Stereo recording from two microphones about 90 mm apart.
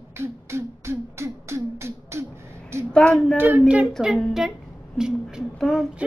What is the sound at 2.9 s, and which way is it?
Child singing, 10° left (ahead or behind).